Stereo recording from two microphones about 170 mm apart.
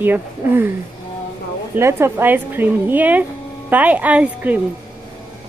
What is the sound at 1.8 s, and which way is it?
Speech, 15° right (ahead or behind).